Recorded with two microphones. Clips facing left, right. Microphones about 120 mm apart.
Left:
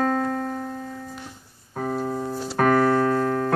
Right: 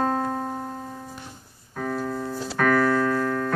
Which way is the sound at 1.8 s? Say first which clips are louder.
Left 2 dB; 30° left (ahead or behind).